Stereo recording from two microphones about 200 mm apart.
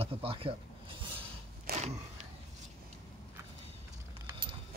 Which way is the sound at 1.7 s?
50° right (ahead or behind).